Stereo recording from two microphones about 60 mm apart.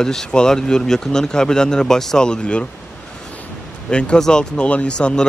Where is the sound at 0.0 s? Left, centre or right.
Centre.